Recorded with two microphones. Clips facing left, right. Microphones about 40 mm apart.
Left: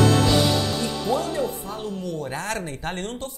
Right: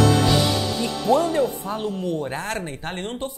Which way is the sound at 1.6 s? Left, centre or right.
Right.